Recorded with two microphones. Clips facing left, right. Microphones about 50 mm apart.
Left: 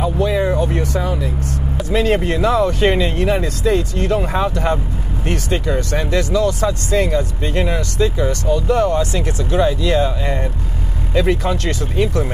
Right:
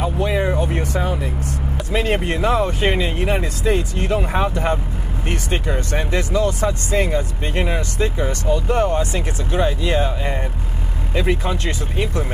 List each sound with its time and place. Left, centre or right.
0.0 s vehicle: right
1.0 s speech: right
1.9 s speech: right
2.8 s speech: centre